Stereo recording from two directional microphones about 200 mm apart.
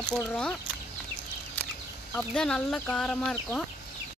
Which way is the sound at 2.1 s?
5° left (ahead or behind).